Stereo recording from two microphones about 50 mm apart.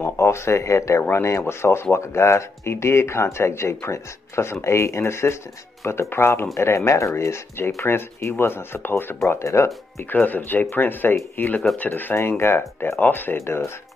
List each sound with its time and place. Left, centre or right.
0.0 s speech: left
1.5 s speech: left
6.5 s speech: left
10.0 s speech: left
12.4 s speech: left
13.0 s speech: left